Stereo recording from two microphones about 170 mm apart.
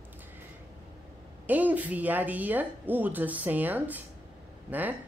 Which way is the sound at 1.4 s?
10° right (ahead or behind).